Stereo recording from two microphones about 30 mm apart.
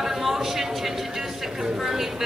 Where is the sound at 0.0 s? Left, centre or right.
Centre.